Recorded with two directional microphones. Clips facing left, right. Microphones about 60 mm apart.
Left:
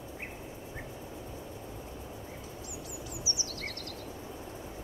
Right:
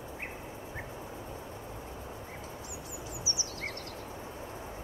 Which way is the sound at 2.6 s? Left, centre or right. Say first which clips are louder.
Even; right.